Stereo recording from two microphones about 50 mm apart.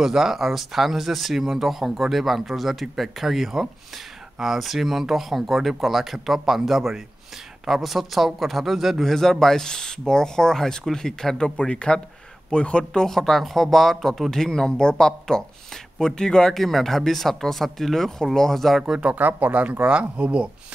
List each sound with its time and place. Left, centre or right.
0.0 s speech: centre
9.1 s speech: centre
19.1 s speech: right